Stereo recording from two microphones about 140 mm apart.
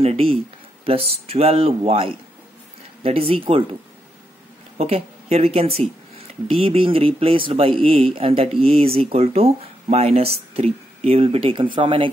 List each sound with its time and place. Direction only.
0.0 s a man's voice: 45° right (ahead or behind)
4.7 s a man's voice: 45° right (ahead or behind)